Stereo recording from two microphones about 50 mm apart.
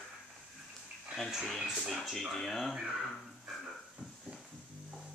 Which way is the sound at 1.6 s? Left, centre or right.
Centre.